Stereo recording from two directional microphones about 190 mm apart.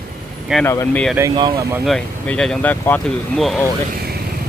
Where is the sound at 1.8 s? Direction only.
5° left (ahead or behind).